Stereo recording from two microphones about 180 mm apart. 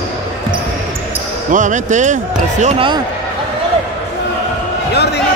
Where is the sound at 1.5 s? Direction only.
45° right (ahead or behind).